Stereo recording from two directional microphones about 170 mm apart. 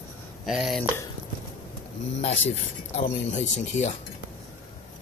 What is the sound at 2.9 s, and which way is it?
Speech, 45° left (ahead or behind).